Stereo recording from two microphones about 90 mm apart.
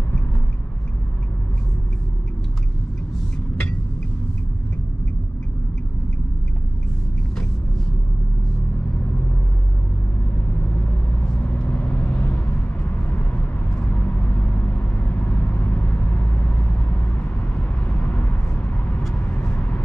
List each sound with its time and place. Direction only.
11.3 s vehicle: 15° left (ahead or behind)